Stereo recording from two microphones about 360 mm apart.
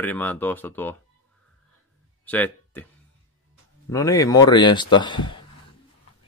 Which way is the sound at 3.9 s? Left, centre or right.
Centre.